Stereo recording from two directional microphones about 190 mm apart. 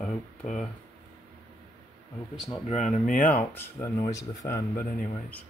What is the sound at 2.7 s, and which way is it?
Speech, 40° left (ahead or behind).